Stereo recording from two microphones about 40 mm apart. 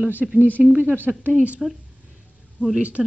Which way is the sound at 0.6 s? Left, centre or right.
Right.